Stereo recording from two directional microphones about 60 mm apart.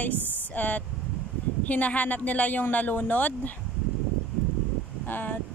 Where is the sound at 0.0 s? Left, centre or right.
Left.